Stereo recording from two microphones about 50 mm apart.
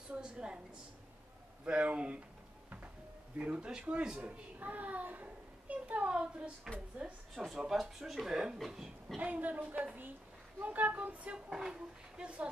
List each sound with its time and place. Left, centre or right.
0.1 s a child's voice: centre
1.6 s a child's voice: right
3.3 s a child's voice: right
4.2 s a child's voice: right
7.4 s speech: centre
9.2 s speech: right
11.3 s speech: centre